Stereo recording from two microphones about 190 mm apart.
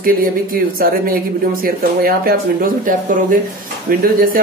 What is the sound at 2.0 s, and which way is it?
Speech, 50° right (ahead or behind).